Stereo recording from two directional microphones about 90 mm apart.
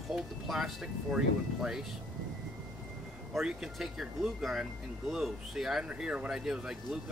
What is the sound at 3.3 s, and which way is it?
Speech, 5° right (ahead or behind).